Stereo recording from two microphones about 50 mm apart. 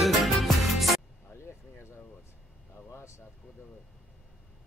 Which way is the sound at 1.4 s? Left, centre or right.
Left.